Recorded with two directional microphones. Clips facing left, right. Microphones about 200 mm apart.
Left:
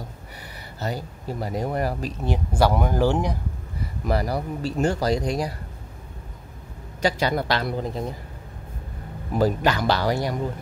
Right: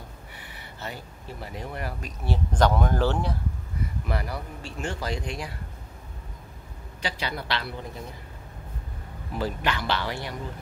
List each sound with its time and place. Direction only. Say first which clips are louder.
0.4 s speech: left 7 dB; 40° left (ahead or behind)
2.2 s speech: left 2 dB; 10° left (ahead or behind)
4.0 s speech: left 10 dB; 40° left (ahead or behind)
7.0 s speech: left 10 dB; 45° left (ahead or behind)
9.3 s speech: left 7 dB; 40° left (ahead or behind)